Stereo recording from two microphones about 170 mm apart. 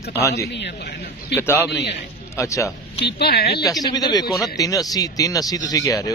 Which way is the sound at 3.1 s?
70° left (ahead or behind).